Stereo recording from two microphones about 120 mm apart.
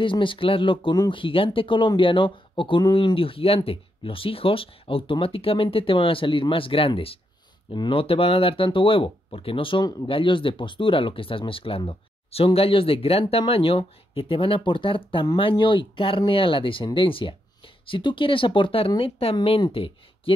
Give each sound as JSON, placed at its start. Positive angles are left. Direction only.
{"t": 0.0, "sound": "speech", "side_deg": 45}